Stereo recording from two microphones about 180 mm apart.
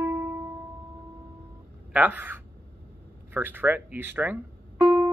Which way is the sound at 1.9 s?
10° right (ahead or behind).